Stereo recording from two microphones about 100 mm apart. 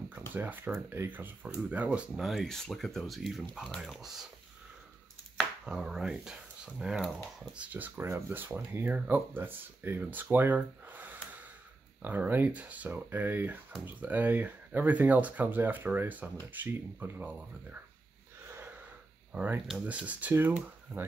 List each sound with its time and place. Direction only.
0.3 s speech: 20° right (ahead or behind)
2.1 s speech: centre (ahead or behind)
5.7 s speech: 5° right (ahead or behind)
10.3 s a sound: 20° right (ahead or behind)
12.0 s speech: 20° right (ahead or behind)
19.3 s speech: 15° right (ahead or behind)